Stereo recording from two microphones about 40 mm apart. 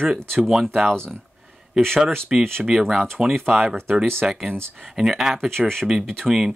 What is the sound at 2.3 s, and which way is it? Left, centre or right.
Speech, centre.